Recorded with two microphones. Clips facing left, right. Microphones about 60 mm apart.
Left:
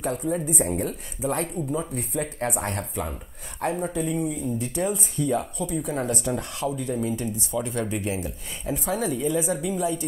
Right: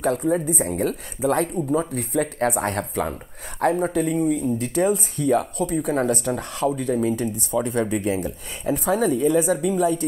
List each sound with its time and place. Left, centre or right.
0.0 s speech: right